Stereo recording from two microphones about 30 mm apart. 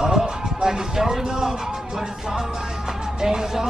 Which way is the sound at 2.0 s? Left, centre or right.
Right.